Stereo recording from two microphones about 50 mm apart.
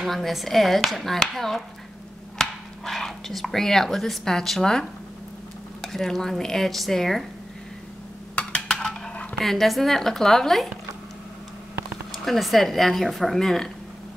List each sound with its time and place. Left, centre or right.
0.0 s speech: centre
2.3 s whispering: centre
3.5 s dishes: centre
8.4 s a sound: centre
8.7 s dishes: centre
9.4 s speech: centre
12.1 s speech: centre